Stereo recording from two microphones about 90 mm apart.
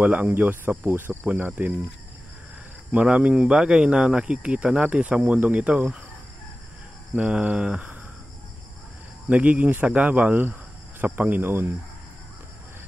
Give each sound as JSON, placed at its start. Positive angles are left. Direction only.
{"t": 0.0, "sound": "speech", "side_deg": -20}
{"t": 2.9, "sound": "speech", "side_deg": -15}
{"t": 7.2, "sound": "speech", "side_deg": -15}
{"t": 9.3, "sound": "speech", "side_deg": -15}